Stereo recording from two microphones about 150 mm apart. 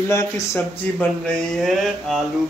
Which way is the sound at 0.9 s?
5° left (ahead or behind).